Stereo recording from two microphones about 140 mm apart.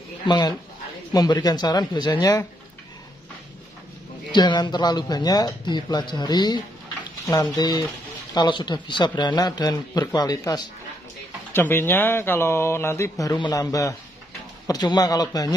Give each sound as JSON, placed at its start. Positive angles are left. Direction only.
{"t": 0.3, "sound": "speech", "side_deg": 30}
{"t": 4.3, "sound": "speech", "side_deg": 30}
{"t": 11.5, "sound": "speech", "side_deg": 15}